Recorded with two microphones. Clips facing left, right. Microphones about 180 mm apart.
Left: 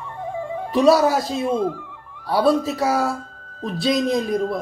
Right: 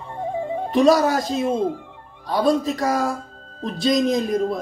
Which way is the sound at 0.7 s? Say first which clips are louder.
Left 1 dB; centre (ahead or behind).